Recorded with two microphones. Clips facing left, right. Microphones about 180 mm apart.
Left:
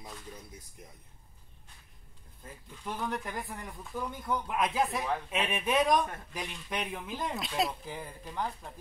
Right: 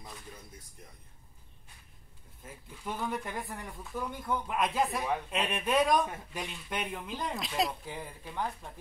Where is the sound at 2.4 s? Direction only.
5° right (ahead or behind).